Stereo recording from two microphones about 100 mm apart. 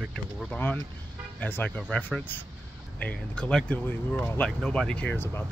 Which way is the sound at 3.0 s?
15° left (ahead or behind).